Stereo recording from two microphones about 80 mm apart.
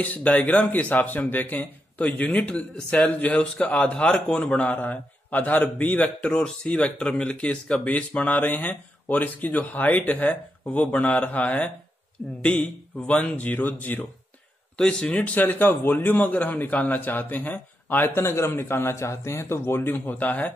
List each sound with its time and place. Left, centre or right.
0.0 s a man's voice: centre
6.3 s a man's voice: centre
14.8 s a man's voice: centre